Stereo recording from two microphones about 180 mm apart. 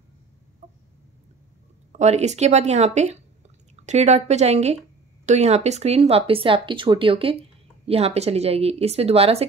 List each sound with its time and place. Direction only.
0.6 s chicken: 35° right (ahead or behind)
1.9 s speech: 40° right (ahead or behind)